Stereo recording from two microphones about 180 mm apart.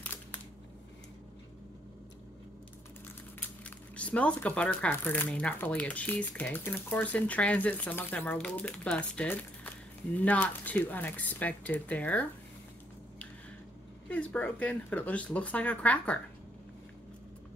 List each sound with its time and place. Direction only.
0.0 s a sound: 10° left (ahead or behind)
3.9 s speech: 5° left (ahead or behind)
14.0 s speech: 10° left (ahead or behind)